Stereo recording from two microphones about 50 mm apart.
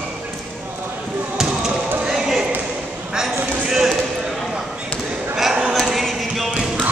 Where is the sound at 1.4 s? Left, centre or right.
Centre.